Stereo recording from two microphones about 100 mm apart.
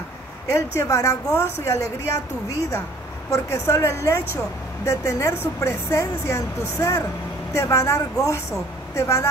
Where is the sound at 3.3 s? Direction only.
30° left (ahead or behind).